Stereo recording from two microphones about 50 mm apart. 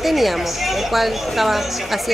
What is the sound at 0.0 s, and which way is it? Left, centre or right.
A woman's voice, centre.